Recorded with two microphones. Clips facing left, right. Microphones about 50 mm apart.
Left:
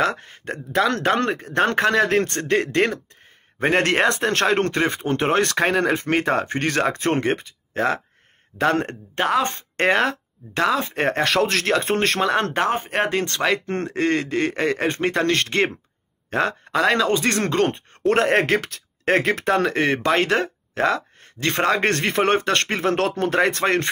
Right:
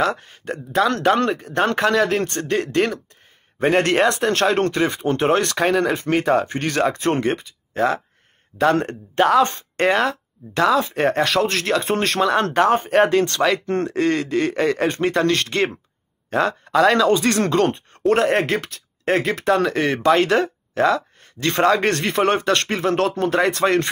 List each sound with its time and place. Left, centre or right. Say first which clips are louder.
0.0 s speech: right 1 dB; left
1.0 s speech: right 3 dB; left
2.2 s speech: right 1 dB; left
2.5 s speech: left 1 dB; left
9.8 s speech: right 1 dB; left
12.5 s speech: right 6 dB; centre
13.2 s speech: right 3 dB; left
18.0 s speech: right 1 dB; left
19.4 s speech: right 1 dB; left
20.7 s a sound: right 3 dB; left
21.5 s speech: right 3 dB; left
22.8 s speech: right 3 dB; left
23.6 s speech: right 3 dB; left